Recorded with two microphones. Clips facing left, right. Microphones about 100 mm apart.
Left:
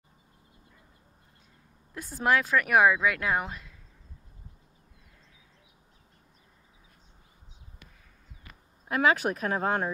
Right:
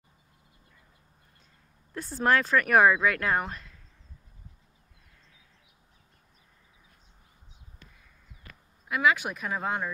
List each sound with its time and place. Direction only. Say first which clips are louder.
2.0 s speech: right 1 dB; 10° left (ahead or behind)
8.8 s speech: left 1 dB; 40° left (ahead or behind)
9.5 s speech: left 2 dB; 50° left (ahead or behind)